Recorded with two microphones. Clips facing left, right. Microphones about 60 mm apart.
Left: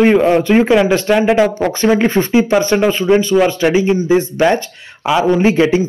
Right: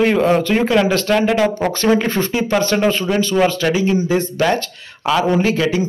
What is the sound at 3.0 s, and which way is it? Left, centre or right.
Speech, left.